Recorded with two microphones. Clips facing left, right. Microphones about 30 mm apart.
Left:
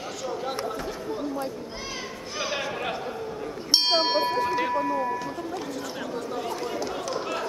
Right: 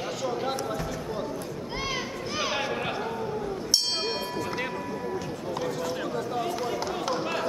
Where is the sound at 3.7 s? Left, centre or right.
Left.